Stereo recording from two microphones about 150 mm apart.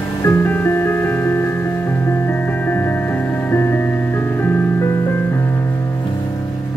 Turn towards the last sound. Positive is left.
turn(degrees=15)  # may be behind; listen again after turning